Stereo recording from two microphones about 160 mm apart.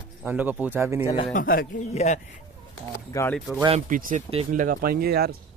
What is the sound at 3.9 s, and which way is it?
Speech, 55° right (ahead or behind).